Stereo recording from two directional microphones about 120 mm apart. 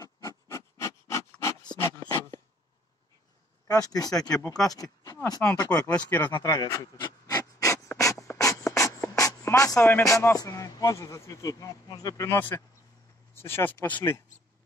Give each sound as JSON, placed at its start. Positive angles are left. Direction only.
{"t": 0.0, "sound": "a sound", "side_deg": 30}
{"t": 1.8, "sound": "beatboxing", "side_deg": 20}
{"t": 3.6, "sound": "speech", "side_deg": 30}
{"t": 5.7, "sound": "speech", "side_deg": 10}
{"t": 6.4, "sound": "pant", "side_deg": 25}
{"t": 8.4, "sound": "beatboxing", "side_deg": 25}
{"t": 10.0, "sound": "speech", "side_deg": 25}